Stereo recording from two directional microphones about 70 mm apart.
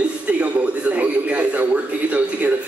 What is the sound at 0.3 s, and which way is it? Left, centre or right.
A man's voice, centre.